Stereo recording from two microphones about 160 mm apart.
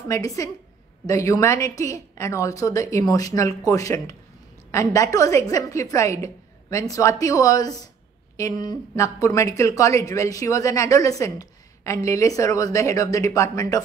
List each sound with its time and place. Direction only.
0.1 s speech: 20° left (ahead or behind)